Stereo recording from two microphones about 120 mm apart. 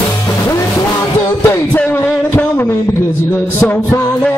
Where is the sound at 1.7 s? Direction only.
15° left (ahead or behind).